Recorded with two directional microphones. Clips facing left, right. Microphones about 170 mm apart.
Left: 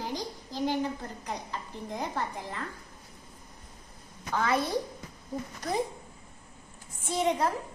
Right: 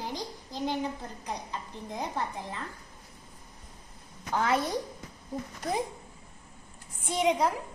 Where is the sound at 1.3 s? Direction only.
15° right (ahead or behind).